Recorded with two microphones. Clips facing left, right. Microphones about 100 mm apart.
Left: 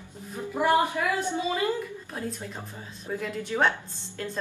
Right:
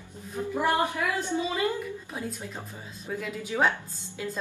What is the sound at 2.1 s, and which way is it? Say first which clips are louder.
A woman's voice: left 1 dB; 5° right (ahead or behind).